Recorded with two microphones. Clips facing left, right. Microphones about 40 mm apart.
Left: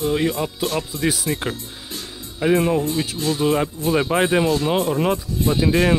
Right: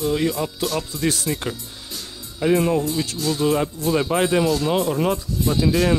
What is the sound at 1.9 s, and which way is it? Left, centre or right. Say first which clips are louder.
Music: left 2 dB; left.